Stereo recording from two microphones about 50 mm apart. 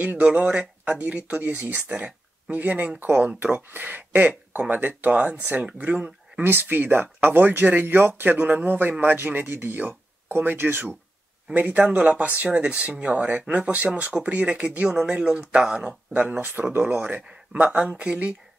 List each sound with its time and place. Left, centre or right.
0.0 s speech: right
2.5 s speech: right
6.4 s speech: right
16.3 s speech: right
17.5 s speech: right